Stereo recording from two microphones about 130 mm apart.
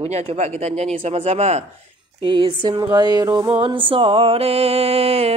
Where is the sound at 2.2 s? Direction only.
40° right (ahead or behind).